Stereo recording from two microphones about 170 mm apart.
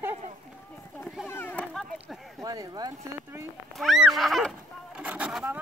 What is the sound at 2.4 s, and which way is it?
Speech, 20° right (ahead or behind).